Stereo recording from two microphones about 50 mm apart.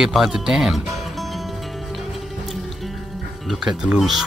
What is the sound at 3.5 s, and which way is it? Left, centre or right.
Speech, centre.